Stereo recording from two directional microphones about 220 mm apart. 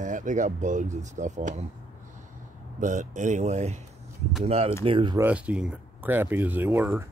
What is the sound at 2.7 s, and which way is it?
Speech, 35° right (ahead or behind).